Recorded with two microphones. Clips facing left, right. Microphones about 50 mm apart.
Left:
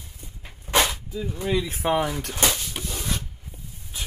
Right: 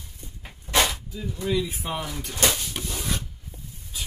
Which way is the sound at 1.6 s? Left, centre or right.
Left.